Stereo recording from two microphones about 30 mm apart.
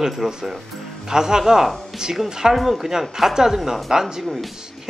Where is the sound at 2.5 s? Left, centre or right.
Centre.